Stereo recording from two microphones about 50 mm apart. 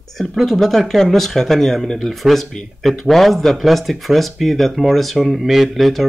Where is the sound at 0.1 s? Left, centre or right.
Centre.